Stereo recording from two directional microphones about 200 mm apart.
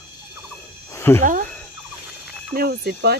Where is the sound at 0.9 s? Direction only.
10° left (ahead or behind).